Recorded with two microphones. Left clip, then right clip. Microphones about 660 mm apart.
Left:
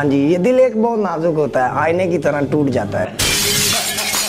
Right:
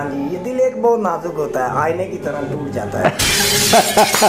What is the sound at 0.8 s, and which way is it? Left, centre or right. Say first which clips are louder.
A man's voice: right 1 dB; left.